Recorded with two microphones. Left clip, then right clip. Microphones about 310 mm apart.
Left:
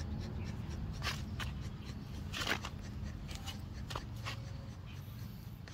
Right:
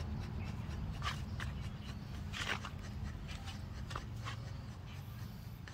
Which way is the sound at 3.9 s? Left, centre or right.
Left.